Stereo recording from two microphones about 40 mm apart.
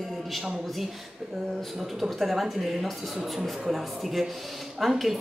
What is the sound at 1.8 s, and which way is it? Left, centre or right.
A woman's voice, centre.